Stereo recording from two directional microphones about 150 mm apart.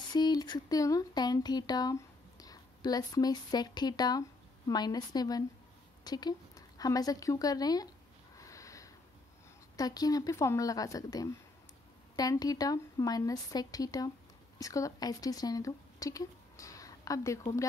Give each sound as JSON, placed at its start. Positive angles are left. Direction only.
{"t": 0.1, "sound": "speech", "side_deg": 25}
{"t": 8.4, "sound": "sniff", "side_deg": 20}
{"t": 9.8, "sound": "a woman's voice", "side_deg": 25}